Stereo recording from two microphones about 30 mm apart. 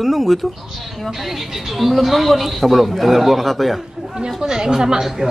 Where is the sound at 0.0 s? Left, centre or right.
Centre.